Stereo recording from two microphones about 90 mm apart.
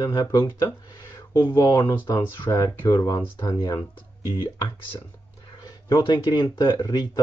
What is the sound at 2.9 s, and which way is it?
Speech, 55° left (ahead or behind).